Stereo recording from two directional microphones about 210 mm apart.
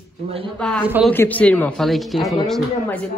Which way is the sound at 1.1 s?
10° left (ahead or behind).